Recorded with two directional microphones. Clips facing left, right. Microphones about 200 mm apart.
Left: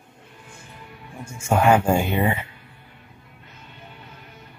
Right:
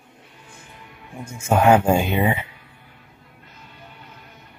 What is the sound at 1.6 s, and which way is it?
Speech, 20° right (ahead or behind).